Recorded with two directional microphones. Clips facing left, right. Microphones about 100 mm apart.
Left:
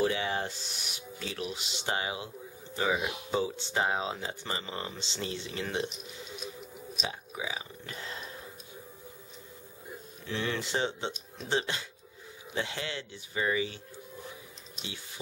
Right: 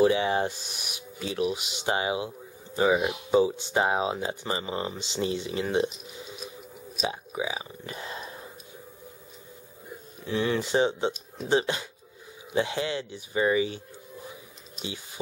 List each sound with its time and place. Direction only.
0.0 s speech: 20° right (ahead or behind)
7.1 s speech: 20° right (ahead or behind)
10.2 s speech: 15° right (ahead or behind)